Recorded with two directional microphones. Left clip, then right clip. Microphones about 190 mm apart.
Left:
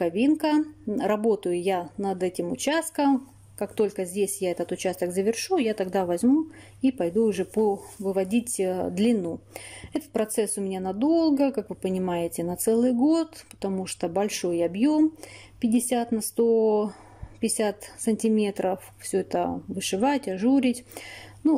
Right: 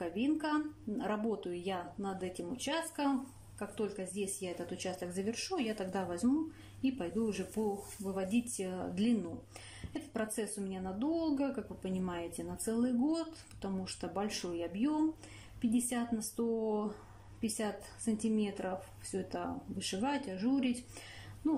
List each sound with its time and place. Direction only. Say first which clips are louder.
0.0 s speech: left 12 dB; 50° left (ahead or behind)